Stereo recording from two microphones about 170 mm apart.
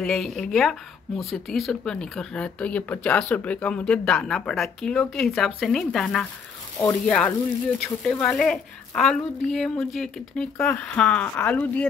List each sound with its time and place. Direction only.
0.0 s speech: 5° left (ahead or behind)